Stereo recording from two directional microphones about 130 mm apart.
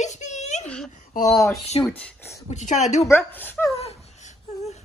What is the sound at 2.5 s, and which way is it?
Speech, 65° left (ahead or behind).